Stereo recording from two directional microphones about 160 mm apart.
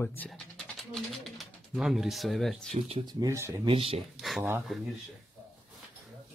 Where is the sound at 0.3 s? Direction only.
Centre (ahead or behind).